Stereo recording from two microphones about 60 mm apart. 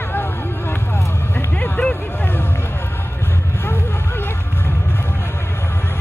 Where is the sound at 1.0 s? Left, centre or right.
Left.